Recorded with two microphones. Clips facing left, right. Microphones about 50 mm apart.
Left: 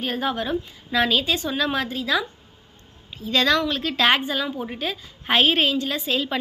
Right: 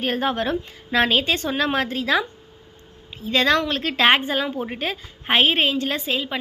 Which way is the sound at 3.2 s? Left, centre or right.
Right.